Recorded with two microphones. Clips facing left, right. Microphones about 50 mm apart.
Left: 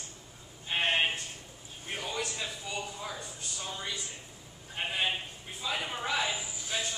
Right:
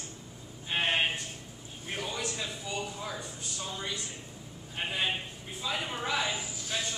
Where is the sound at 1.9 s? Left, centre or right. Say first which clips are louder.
Even; centre.